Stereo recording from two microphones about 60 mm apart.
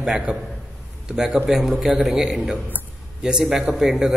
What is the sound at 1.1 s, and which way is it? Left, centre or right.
A man's voice, centre.